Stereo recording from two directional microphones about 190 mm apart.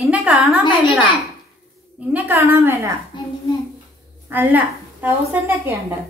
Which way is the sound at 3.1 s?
25° left (ahead or behind).